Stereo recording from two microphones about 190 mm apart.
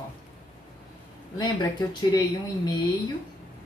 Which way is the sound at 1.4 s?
20° left (ahead or behind).